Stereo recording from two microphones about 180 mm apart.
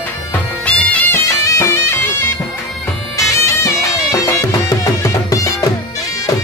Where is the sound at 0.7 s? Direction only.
5° left (ahead or behind).